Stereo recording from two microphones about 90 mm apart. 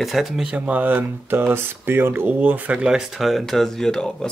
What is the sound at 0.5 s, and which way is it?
Speech, 15° right (ahead or behind).